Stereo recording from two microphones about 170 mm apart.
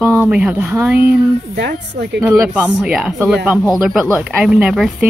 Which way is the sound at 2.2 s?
10° right (ahead or behind).